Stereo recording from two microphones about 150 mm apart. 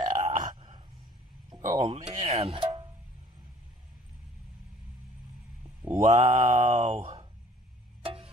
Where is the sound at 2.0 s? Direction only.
45° right (ahead or behind).